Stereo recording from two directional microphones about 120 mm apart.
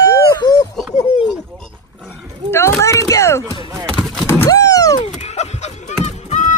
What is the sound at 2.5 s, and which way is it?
Speech, 20° left (ahead or behind).